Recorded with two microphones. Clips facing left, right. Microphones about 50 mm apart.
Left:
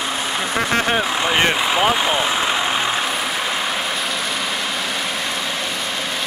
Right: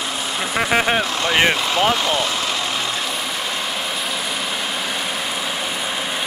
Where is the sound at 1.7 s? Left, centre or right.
Centre.